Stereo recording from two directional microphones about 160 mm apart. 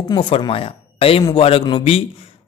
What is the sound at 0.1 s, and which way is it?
Speech, 30° left (ahead or behind).